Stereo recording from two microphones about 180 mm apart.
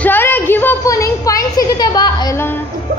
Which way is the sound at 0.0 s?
10° left (ahead or behind).